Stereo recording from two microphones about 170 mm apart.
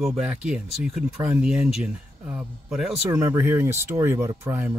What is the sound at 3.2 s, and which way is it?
Speech, 15° right (ahead or behind).